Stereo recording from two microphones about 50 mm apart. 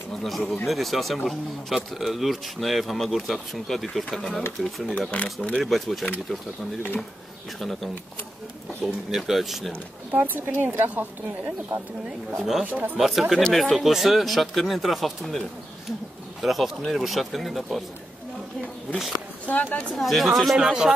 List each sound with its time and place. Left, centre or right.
0.1 s speech: centre
5.1 s speech: left
5.6 s speech: centre
8.8 s speech: centre
10.1 s speech: right
12.4 s speech: centre
12.6 s speech: right
13.0 s speech: centre
19.4 s speech: left
20.0 s speech: centre
20.6 s speech: centre